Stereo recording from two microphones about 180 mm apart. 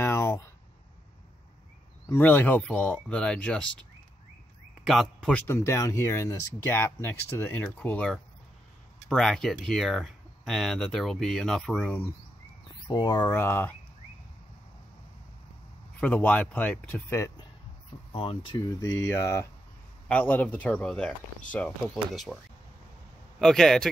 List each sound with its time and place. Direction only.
0.0 s a sound: 15° left (ahead or behind)
2.0 s speech: 10° left (ahead or behind)
4.8 s speech: centre (ahead or behind)
12.8 s speech: 25° left (ahead or behind)
16.0 s speech: 10° left (ahead or behind)
18.1 s speech: 30° left (ahead or behind)
18.6 s speech: 20° left (ahead or behind); by 22.4 s centre (ahead or behind)
23.4 s speech: 5° left (ahead or behind)